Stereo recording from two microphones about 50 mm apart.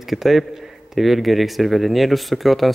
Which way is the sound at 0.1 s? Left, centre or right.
Centre.